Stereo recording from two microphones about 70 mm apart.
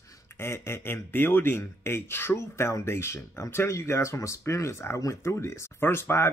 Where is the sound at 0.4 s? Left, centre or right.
Left.